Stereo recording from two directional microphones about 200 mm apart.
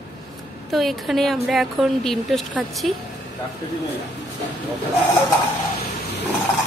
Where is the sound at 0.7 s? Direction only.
Centre (ahead or behind).